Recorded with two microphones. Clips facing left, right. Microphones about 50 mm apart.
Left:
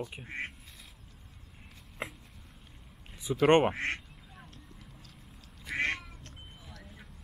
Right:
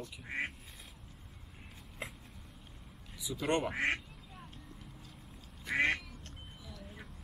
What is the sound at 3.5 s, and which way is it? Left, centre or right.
Speech, left.